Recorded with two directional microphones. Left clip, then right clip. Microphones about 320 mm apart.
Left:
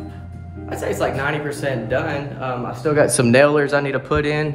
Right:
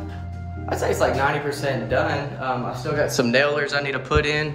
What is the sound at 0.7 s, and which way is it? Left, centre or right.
Speech, centre.